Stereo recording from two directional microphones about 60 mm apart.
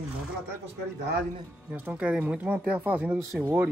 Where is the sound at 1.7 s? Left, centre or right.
Right.